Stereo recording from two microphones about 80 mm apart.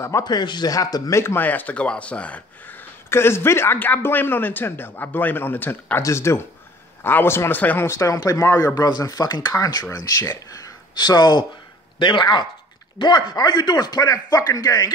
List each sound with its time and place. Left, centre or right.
0.2 s speech: left
0.7 s speech: left
1.1 s speech: left
7.9 s speech: left
11.0 s speech: left
13.0 s speech: left
14.0 s speech: left